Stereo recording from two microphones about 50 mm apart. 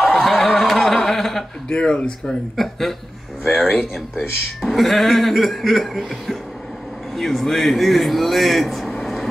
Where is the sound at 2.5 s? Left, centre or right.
Centre.